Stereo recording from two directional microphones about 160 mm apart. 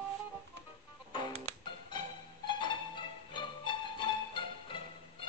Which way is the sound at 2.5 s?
30° left (ahead or behind).